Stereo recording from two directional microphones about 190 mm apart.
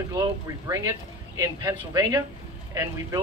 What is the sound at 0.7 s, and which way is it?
Speech, 15° right (ahead or behind).